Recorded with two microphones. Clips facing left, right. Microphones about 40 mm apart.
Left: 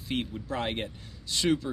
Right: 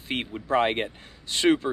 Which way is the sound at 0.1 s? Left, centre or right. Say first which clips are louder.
Right 7 dB; right.